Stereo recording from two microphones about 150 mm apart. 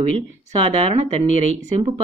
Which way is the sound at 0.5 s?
35° right (ahead or behind).